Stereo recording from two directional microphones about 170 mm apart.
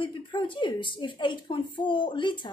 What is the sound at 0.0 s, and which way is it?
A woman's voice, 30° left (ahead or behind).